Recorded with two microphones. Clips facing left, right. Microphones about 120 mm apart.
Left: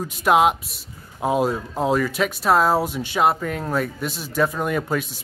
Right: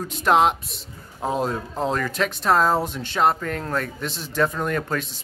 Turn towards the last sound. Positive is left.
turn(degrees=10)  # may be behind; listen again after turning